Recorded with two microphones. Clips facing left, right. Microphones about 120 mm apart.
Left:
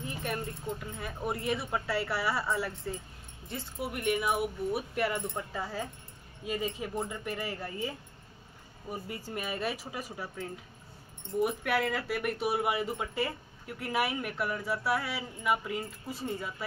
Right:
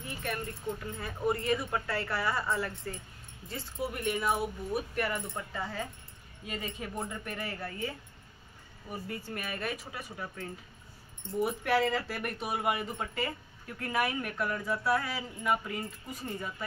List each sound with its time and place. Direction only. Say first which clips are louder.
0.0 s keys jangling: left 1 dB; 15° left (ahead or behind)
0.7 s speech: even; 5° left (ahead or behind)
8.9 s speech: even; 10° left (ahead or behind)